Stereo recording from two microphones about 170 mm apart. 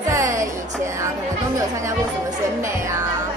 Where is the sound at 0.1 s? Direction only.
20° right (ahead or behind).